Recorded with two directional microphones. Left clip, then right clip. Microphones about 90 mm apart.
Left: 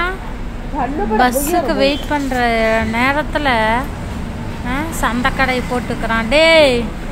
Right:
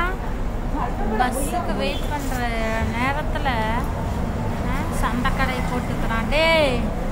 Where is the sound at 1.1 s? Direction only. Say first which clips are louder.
Left 9 dB; 45° left (ahead or behind).